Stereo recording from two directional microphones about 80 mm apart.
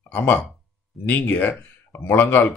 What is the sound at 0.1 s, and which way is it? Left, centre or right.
Speech, left.